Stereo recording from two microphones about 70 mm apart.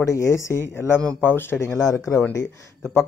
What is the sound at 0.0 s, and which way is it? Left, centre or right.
Speech, left.